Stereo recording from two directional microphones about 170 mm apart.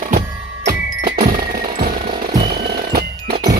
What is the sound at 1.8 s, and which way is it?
Music, 55° right (ahead or behind).